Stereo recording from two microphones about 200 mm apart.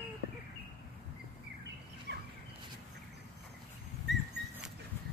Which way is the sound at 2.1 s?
55° right (ahead or behind).